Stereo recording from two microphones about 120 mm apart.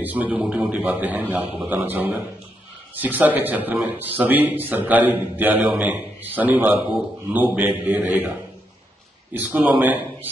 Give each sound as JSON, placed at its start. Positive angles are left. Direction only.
{"t": 0.0, "sound": "a man's voice", "side_deg": -15}